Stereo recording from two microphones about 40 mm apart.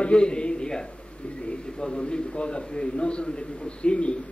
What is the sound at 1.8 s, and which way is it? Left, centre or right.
Speech, left.